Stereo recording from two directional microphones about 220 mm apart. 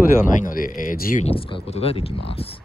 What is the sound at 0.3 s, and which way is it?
Speech, 35° left (ahead or behind).